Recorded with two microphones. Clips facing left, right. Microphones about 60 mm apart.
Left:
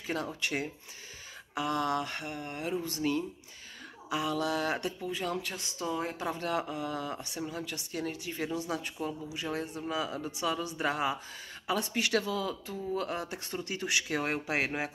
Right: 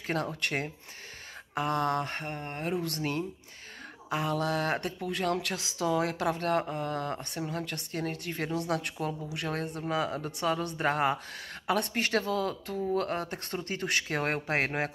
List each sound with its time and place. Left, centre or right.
0.0 s speech: right
2.7 s speech: right